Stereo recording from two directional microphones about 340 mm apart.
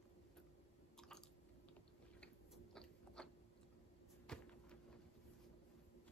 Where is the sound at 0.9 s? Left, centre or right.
Centre.